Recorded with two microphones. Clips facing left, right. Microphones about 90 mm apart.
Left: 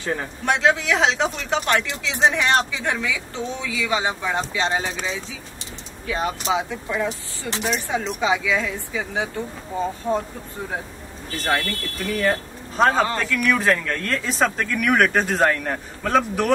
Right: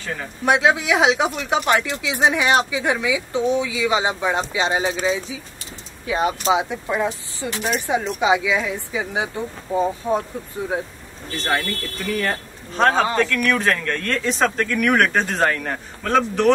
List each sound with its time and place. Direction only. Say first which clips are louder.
0.5 s speech: right 2 dB; 10° right (ahead or behind)
11.3 s speech: even; 5° left (ahead or behind)